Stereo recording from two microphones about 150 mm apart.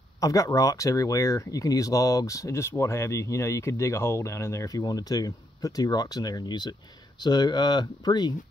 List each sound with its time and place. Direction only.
0.2 s speech: 20° left (ahead or behind)